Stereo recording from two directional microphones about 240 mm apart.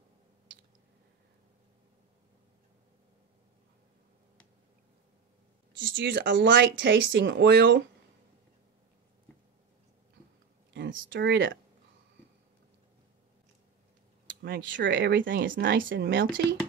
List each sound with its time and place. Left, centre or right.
5.8 s speech: right
10.7 s speech: right
14.4 s speech: right